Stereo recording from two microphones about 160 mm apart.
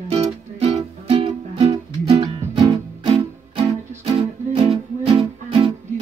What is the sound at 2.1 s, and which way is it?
Music, 25° right (ahead or behind).